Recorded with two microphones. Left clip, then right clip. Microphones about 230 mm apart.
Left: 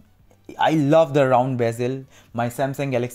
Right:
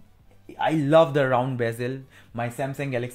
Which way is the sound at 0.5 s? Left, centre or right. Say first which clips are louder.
Left 3 dB; left.